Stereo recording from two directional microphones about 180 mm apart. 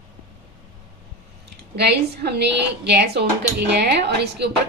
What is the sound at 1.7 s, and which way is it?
A woman's voice, 65° right (ahead or behind).